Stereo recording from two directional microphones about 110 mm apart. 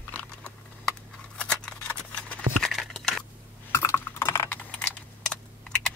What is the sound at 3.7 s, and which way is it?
Typing, 25° left (ahead or behind).